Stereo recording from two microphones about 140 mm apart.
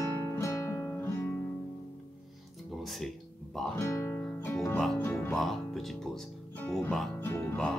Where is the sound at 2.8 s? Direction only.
Centre (ahead or behind).